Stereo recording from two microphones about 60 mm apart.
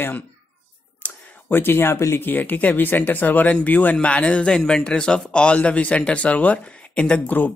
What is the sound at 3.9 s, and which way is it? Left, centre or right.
Speech, centre.